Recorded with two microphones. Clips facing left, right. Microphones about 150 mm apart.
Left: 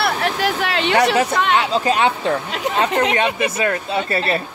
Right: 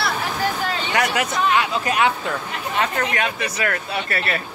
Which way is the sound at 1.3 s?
80° left.